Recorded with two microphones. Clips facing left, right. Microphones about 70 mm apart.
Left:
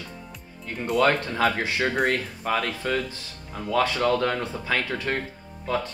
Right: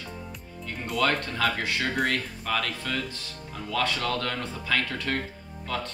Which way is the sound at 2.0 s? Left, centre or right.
Left.